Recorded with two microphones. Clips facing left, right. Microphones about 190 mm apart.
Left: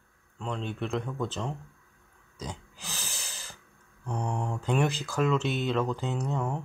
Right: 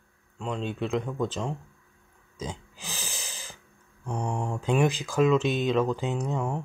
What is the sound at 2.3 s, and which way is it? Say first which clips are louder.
Pig: right 3 dB; 20° right (ahead or behind).